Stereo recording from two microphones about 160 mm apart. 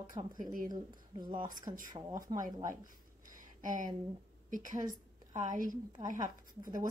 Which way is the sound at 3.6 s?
55° right (ahead or behind).